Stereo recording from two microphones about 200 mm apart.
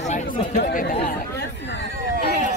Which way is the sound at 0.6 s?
50° left (ahead or behind).